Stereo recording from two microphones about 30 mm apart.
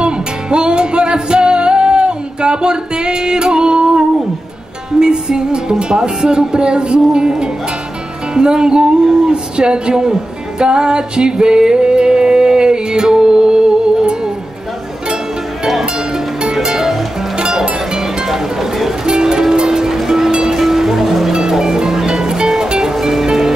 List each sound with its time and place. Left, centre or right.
0.0 s music: right
9.3 s speech: right
10.6 s music: right
16.6 s music: centre
19.0 s music: right
20.2 s music: right
20.5 s music: centre
22.9 s music: centre